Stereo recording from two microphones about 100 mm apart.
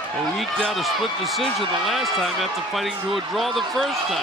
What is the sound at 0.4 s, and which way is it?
Speech, centre (ahead or behind).